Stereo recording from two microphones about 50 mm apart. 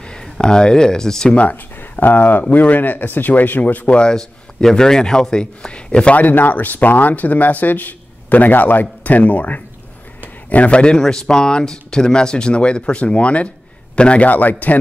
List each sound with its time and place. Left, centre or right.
0.0 s speech: centre
1.3 s speech: left
1.8 s speech: left
6.2 s a man's voice: left
10.5 s a man's voice: left